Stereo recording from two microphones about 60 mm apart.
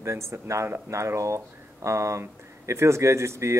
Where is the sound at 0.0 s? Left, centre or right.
Right.